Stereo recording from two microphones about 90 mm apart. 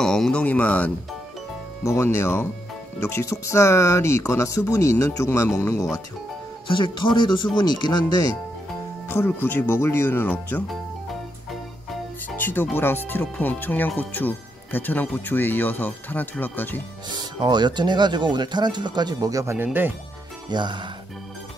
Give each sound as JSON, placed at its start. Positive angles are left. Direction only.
{"t": 0.0, "sound": "speech", "side_deg": 5}
{"t": 1.8, "sound": "speech", "side_deg": 30}
{"t": 6.7, "sound": "speech", "side_deg": 65}
{"t": 9.1, "sound": "speech", "side_deg": 25}
{"t": 12.4, "sound": "speech", "side_deg": 20}
{"t": 17.1, "sound": "speech", "side_deg": -55}
{"t": 19.5, "sound": "speech", "side_deg": -20}
{"t": 20.4, "sound": "speech", "side_deg": -55}